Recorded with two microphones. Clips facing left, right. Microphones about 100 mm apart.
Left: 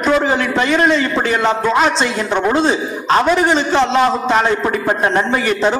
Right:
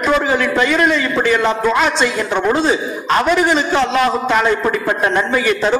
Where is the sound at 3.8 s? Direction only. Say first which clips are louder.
Left 1 dB; 30° left (ahead or behind).